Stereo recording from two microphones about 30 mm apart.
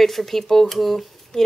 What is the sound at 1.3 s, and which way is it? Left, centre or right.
Speech, centre.